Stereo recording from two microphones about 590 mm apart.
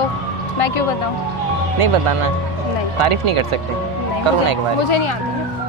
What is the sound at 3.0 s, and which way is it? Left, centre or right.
Speech, right.